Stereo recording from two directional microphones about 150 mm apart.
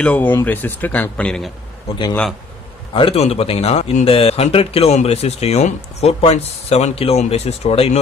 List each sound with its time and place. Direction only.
0.0 s speech: 10° left (ahead or behind)
2.9 s a man's voice: 35° left (ahead or behind)